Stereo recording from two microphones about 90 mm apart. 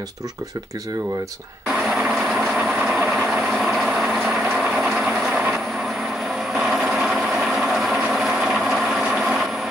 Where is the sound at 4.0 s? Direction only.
5° right (ahead or behind).